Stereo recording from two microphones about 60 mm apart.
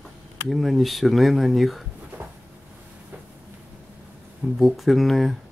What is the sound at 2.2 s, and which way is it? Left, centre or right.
Cupboard open or close, right.